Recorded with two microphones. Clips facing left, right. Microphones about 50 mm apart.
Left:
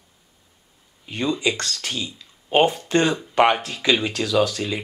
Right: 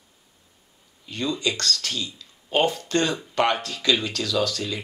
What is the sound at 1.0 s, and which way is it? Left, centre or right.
Speech, left.